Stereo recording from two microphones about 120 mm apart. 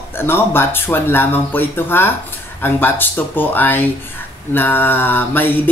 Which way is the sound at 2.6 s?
15° left (ahead or behind).